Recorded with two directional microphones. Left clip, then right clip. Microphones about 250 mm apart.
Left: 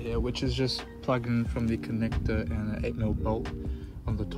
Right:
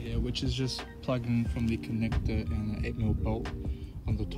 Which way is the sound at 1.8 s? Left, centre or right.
Centre.